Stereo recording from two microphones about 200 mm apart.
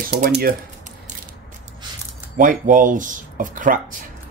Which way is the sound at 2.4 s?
40° right (ahead or behind).